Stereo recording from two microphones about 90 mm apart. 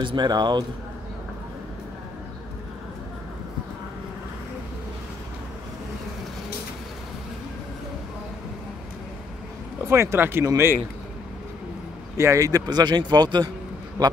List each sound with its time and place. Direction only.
0.0 s speech: 55° right (ahead or behind)
9.8 s speech: 30° right (ahead or behind)
12.2 s speech: 35° right (ahead or behind); by 13.5 s 50° right (ahead or behind)